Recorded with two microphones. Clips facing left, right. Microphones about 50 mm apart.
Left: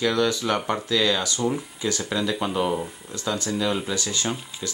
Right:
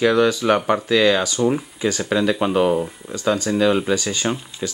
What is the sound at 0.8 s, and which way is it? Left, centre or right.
Speech, right.